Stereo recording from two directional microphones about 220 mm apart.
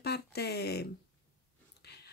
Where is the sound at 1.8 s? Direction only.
50° left (ahead or behind).